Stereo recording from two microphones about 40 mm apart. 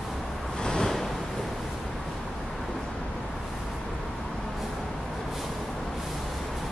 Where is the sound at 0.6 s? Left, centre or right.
Centre.